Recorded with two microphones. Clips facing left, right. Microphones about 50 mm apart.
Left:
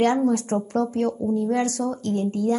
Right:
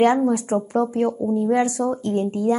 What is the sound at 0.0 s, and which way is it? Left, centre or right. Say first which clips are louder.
Speech: right 3 dB; centre.